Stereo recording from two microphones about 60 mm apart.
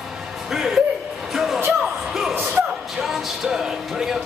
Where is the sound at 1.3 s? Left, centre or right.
Centre.